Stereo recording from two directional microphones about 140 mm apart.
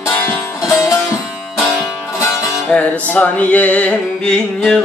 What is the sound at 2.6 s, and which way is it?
Music, 5° left (ahead or behind).